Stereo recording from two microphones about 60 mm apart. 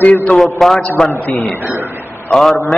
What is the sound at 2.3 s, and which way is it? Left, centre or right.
Speech, centre.